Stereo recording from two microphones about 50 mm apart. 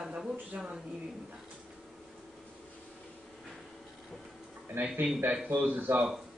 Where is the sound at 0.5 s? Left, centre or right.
Right.